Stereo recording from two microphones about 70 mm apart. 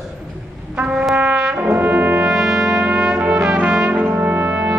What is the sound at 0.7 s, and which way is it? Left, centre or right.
Music, centre.